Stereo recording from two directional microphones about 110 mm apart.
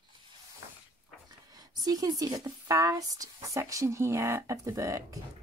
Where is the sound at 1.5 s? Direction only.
35° right (ahead or behind).